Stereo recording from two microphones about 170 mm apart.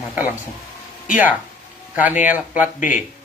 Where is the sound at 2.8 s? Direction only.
50° left (ahead or behind).